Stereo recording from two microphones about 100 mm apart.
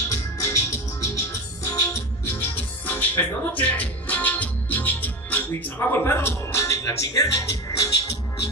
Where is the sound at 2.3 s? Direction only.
15° left (ahead or behind); by 8.2 s 35° left (ahead or behind).